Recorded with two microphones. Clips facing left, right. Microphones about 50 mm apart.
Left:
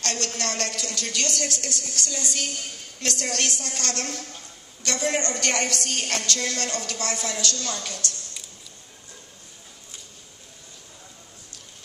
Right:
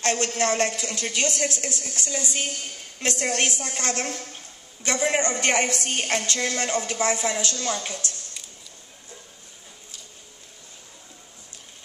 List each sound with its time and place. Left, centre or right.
0.0 s a woman's voice: right